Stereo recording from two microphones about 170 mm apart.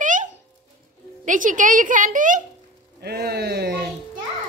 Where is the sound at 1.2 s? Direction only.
50° right (ahead or behind).